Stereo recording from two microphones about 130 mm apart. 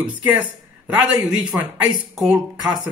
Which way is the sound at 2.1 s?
5° right (ahead or behind).